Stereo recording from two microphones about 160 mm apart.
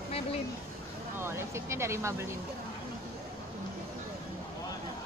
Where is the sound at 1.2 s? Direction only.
15° right (ahead or behind).